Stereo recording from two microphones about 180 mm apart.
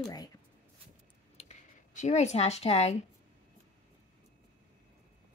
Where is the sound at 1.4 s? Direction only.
40° left (ahead or behind).